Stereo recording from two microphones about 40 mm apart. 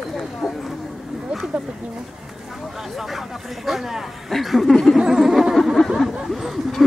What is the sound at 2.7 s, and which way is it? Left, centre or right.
Speech, centre.